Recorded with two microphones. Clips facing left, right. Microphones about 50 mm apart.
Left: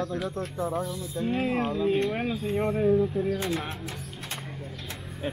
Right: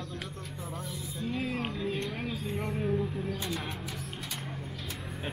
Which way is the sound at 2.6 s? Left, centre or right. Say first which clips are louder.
Left 9 dB; centre.